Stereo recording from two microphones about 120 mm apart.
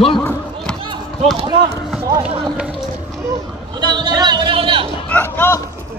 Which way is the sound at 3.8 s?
40° right (ahead or behind).